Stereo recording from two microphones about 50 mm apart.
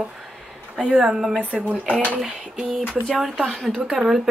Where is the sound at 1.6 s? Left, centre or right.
Right.